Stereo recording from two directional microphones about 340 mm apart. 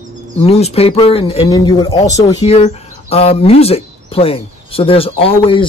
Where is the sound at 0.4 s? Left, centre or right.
Centre.